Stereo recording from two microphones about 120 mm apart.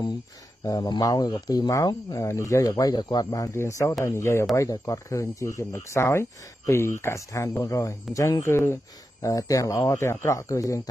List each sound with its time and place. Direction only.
0.7 s speech: 35° left (ahead or behind)